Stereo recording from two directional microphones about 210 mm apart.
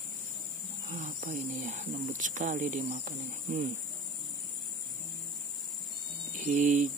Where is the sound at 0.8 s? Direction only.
40° right (ahead or behind).